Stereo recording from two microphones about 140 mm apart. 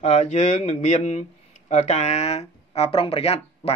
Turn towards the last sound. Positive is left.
turn(degrees=45)  # may be behind; listen again after turning